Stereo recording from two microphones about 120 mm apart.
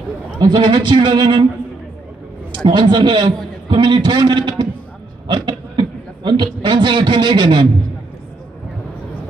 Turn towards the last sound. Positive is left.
turn(degrees=-40)  # may be behind; listen again after turning